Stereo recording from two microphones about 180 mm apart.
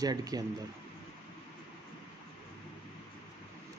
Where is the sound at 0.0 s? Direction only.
20° right (ahead or behind).